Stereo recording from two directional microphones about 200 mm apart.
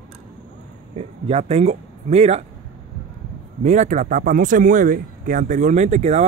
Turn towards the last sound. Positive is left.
turn(degrees=-35)  # may be behind; listen again after turning